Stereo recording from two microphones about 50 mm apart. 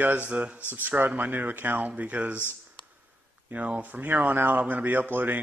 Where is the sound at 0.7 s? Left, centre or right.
Right.